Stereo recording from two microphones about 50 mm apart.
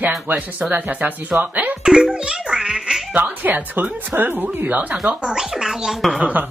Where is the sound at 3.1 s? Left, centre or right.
Right.